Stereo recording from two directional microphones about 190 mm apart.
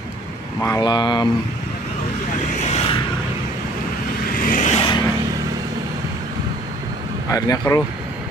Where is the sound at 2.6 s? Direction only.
35° left (ahead or behind).